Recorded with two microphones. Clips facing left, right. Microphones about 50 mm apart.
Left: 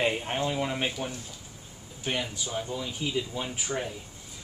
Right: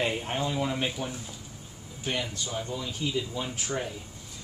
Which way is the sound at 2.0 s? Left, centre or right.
Centre.